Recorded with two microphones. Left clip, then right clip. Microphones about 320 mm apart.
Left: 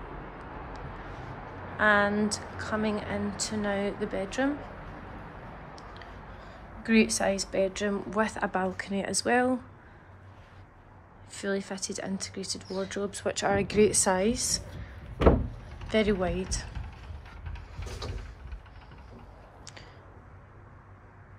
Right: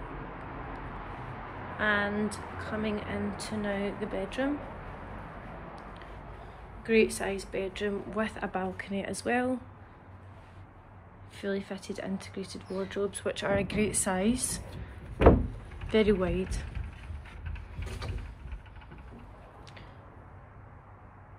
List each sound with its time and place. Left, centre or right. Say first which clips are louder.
1.8 s a woman's voice: left 5 dB; centre
6.8 s a woman's voice: even; centre
11.3 s speech: left 2 dB; centre
15.9 s speech: right 1 dB; centre